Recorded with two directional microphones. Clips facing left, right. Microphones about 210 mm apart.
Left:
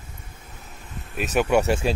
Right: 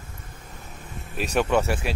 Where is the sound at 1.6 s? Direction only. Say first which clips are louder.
Left 4 dB; 25° left (ahead or behind).